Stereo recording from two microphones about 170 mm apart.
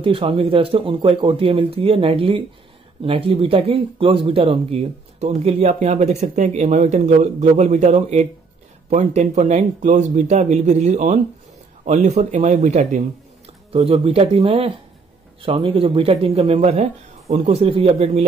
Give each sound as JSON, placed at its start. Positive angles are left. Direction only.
{"t": 0.0, "sound": "speech", "side_deg": -30}